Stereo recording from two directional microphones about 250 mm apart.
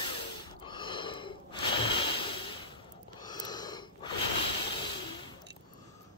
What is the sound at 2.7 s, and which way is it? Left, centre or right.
Snort, centre.